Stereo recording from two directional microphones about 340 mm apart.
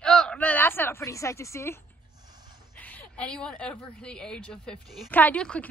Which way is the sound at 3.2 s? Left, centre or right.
Centre.